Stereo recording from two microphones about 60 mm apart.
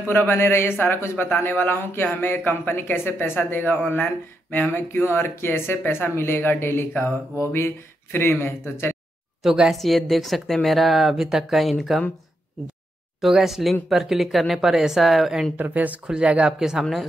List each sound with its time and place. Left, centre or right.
0.1 s speech: left
6.9 s a sound: left
7.3 s speech: left
9.4 s speech: centre
13.2 s speech: centre
15.5 s speech: right
16.5 s a woman's voice: centre